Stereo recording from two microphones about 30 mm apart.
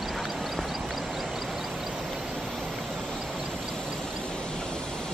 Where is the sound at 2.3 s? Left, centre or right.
Centre.